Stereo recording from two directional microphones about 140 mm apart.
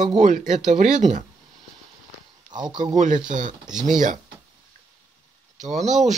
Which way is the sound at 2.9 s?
65° right (ahead or behind).